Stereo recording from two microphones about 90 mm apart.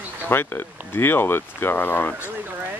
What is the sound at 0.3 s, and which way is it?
Speech, 25° left (ahead or behind).